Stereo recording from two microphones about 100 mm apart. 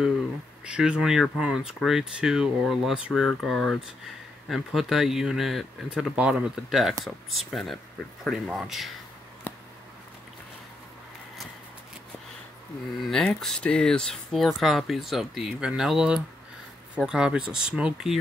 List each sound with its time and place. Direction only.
0.7 s speech: 10° right (ahead or behind)
13.0 s speech: 5° left (ahead or behind)